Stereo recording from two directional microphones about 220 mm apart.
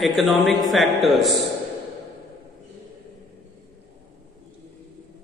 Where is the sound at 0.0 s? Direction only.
Centre (ahead or behind).